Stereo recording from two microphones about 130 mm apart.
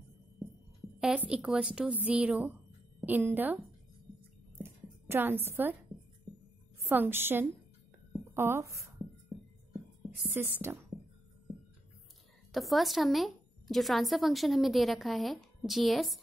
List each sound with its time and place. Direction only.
1.0 s a woman's voice: 5° right (ahead or behind)
4.6 s a sound: 20° right (ahead or behind)
6.8 s a woman's voice: 15° right (ahead or behind)
10.3 s a woman's voice: 20° right (ahead or behind)
12.5 s a woman's voice: centre (ahead or behind)